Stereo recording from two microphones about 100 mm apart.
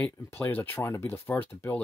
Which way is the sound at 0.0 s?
25° left (ahead or behind).